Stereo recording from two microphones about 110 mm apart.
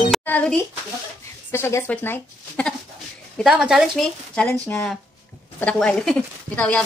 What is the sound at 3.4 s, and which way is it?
A woman's voice, 5° right (ahead or behind).